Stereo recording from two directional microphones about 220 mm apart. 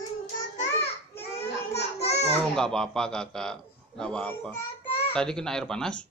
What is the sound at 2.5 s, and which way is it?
A man's voice, 5° left (ahead or behind).